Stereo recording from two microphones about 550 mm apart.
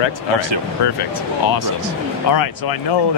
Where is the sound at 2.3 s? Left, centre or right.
Left.